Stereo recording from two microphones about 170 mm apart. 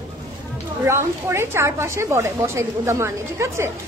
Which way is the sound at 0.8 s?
15° right (ahead or behind).